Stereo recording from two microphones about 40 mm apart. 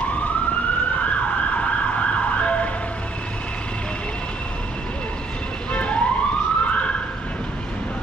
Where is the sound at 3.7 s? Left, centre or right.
Left.